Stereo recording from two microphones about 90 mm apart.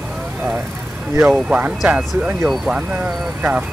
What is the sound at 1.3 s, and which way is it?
Speech, 15° right (ahead or behind).